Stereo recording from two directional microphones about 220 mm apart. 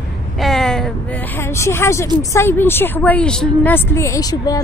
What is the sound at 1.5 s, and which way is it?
A woman's voice, 10° left (ahead or behind).